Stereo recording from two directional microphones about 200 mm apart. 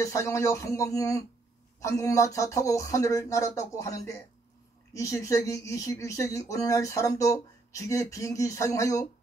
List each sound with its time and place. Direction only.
0.0 s speech: 15° left (ahead or behind)